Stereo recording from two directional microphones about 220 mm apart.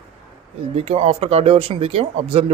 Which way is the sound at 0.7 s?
30° right (ahead or behind).